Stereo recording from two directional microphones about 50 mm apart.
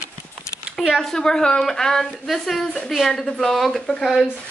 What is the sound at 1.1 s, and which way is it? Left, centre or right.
A woman's voice, centre.